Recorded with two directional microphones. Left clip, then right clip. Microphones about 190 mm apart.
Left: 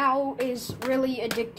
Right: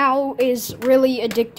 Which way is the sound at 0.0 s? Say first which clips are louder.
Right 7 dB; 60° right (ahead or behind).